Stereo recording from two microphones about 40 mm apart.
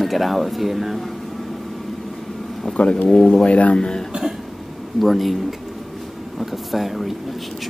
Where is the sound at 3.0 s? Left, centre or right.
Centre.